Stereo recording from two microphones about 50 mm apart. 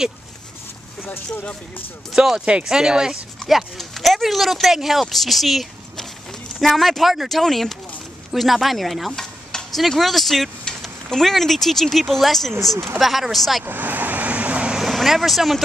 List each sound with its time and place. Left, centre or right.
1.0 s speech: left
2.4 s speech: centre
3.4 s speech: centre
9.1 s stir: centre
9.8 s speech: centre
13.7 s vehicle: right
14.7 s vehicle: centre